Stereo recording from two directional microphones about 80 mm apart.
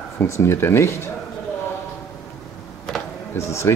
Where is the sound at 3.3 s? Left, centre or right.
Left.